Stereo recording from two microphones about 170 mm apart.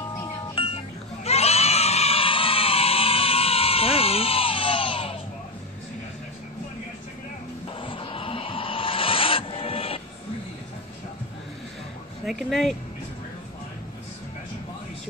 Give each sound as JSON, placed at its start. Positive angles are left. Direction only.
{"t": 0.6, "sound": "music", "side_deg": 30}
{"t": 1.2, "sound": "screaming", "side_deg": 40}
{"t": 7.8, "sound": "a sound", "side_deg": 30}
{"t": 12.3, "sound": "speech", "side_deg": 0}